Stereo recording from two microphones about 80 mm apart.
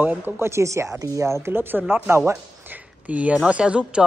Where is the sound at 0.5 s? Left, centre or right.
Right.